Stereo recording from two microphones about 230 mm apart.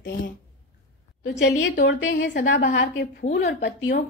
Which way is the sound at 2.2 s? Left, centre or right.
Left.